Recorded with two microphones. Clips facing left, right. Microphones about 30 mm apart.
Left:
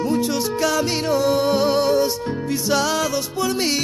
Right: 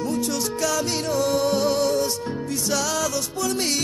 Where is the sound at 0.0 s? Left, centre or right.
Left.